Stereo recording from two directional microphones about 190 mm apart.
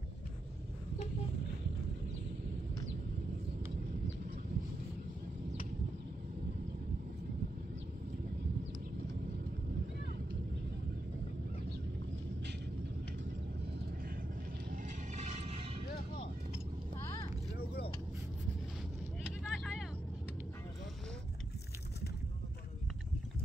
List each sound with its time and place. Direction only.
14.8 s music: 40° right (ahead or behind)
19.5 s vehicle: centre (ahead or behind)